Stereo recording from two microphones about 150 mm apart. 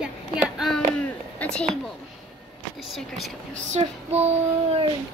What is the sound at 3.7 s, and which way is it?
Child singing, 45° right (ahead or behind).